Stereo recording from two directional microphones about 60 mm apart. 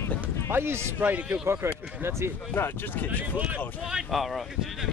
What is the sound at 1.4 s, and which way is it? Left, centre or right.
Speech, right.